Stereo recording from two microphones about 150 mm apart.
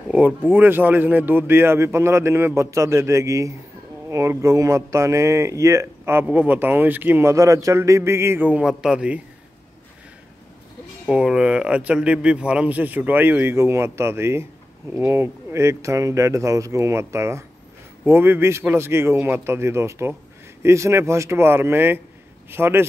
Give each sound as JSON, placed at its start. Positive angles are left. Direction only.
{"t": 0.1, "sound": "speech", "side_deg": -10}
{"t": 11.1, "sound": "speech", "side_deg": -5}